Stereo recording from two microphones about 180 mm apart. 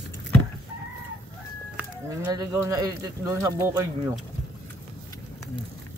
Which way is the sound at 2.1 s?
15° right (ahead or behind).